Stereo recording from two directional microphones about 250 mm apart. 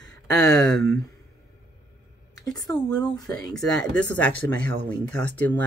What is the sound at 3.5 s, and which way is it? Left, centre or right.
Speech, centre.